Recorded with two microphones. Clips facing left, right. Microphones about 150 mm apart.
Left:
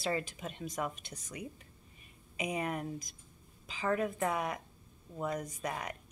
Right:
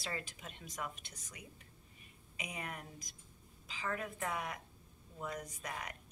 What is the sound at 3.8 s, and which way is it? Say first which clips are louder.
Speech: left 8 dB; 30° left (ahead or behind).